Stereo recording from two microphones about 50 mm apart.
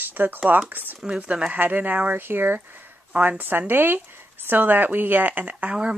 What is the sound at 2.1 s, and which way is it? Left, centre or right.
Speech, right.